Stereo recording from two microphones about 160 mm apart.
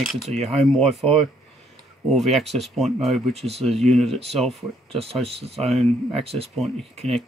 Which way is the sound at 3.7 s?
Centre (ahead or behind).